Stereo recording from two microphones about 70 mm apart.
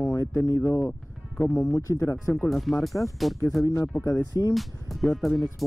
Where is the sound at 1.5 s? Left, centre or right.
Left.